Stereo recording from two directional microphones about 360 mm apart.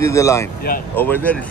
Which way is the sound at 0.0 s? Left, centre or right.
Centre.